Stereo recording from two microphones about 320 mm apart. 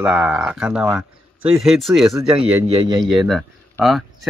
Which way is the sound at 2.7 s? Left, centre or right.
Centre.